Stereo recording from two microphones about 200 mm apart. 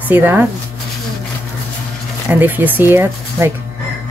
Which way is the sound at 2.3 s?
10° right (ahead or behind).